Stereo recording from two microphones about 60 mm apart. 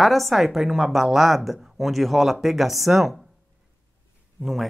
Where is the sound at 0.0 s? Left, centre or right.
Centre.